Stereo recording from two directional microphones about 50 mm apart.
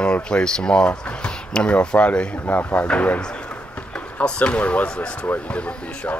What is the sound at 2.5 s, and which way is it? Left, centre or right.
Speech, left.